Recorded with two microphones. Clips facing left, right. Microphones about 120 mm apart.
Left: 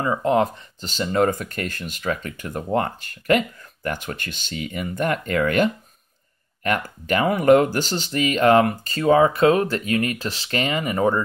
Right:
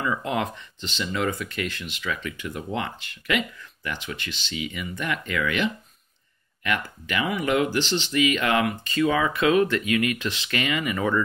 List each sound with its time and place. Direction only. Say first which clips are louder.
0.0 s speech: left 7 dB; 35° left (ahead or behind)